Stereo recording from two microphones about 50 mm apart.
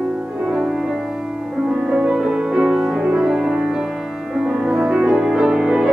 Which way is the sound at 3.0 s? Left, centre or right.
Centre.